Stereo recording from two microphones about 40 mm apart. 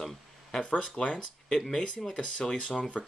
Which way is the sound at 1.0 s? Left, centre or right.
Centre.